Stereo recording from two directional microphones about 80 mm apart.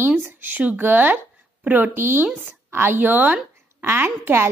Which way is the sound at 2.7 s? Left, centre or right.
Right.